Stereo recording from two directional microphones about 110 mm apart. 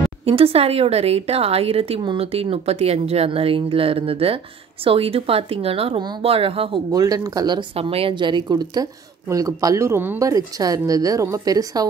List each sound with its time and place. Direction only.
0.2 s speech: 60° right (ahead or behind)
6.9 s a woman's voice: 35° right (ahead or behind)
7.7 s a woman's voice: 60° right (ahead or behind); by 10.2 s 20° right (ahead or behind)
10.2 s a woman's voice: 35° right (ahead or behind)